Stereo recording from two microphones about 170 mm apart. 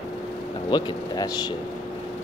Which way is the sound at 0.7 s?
25° left (ahead or behind).